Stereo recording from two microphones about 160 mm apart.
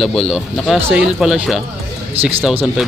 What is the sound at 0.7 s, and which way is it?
Speech, 15° right (ahead or behind).